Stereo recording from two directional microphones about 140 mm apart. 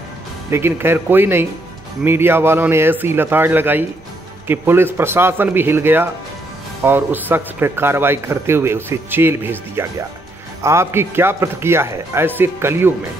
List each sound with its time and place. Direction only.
0.5 s speech: 15° right (ahead or behind)